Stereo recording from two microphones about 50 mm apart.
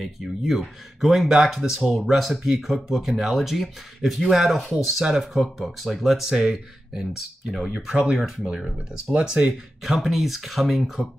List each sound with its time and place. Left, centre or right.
0.0 s speech: centre
8.5 s speech: centre
9.1 s speech: centre